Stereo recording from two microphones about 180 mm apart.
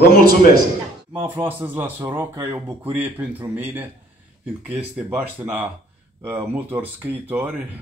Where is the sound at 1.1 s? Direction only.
10° right (ahead or behind).